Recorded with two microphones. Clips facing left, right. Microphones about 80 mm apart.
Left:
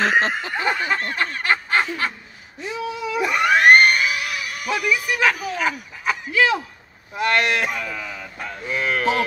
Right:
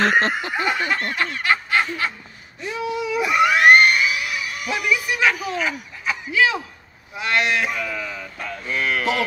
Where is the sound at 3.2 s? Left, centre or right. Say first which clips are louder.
Even; left.